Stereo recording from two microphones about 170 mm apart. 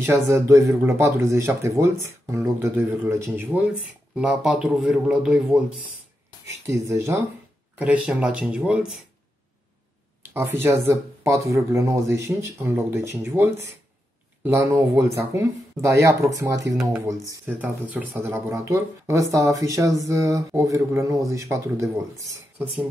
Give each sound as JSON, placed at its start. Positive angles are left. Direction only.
{"t": 0.0, "sound": "a man's voice", "side_deg": -15}
{"t": 6.6, "sound": "speech", "side_deg": -15}
{"t": 10.3, "sound": "speech", "side_deg": -15}